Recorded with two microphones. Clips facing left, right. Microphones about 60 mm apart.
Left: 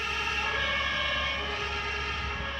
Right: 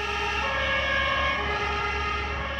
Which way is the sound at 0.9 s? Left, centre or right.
Right.